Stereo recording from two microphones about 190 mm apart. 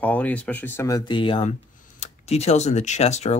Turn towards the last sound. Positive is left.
turn(degrees=35)  # may be behind; listen again after turning